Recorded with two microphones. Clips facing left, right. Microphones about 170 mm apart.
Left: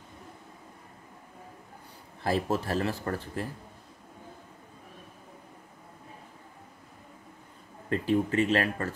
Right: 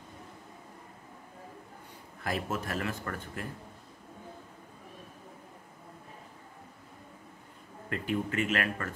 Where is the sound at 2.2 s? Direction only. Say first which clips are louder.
Left 6 dB; 30° left (ahead or behind).